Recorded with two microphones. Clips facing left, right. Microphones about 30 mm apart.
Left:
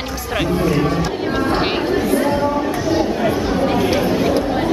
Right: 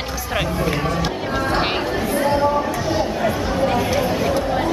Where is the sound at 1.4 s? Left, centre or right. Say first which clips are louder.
Left 1 dB; centre.